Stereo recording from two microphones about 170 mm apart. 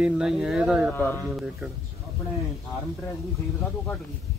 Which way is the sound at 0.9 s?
10° left (ahead or behind).